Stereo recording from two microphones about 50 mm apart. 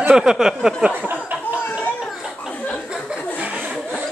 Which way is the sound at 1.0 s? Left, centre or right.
Right.